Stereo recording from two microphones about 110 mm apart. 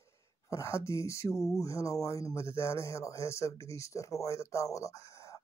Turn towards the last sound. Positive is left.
turn(degrees=25)  # may be behind; listen again after turning